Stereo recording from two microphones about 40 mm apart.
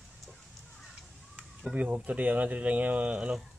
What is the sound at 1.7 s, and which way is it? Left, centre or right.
Speech, right.